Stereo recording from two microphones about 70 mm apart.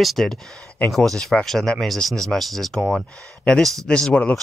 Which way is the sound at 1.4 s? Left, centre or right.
Centre.